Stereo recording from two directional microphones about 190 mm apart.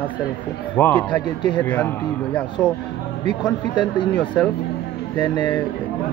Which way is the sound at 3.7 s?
25° left (ahead or behind).